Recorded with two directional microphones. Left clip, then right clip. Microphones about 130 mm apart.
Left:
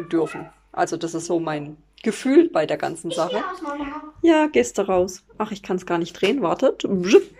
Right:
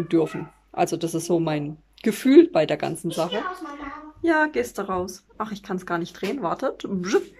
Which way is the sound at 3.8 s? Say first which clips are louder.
Left 6 dB; 10° left (ahead or behind).